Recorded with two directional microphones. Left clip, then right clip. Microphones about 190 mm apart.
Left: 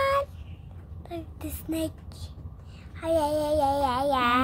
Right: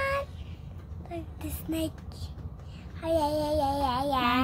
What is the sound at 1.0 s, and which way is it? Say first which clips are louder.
Child singing: left 2 dB; 25° left (ahead or behind).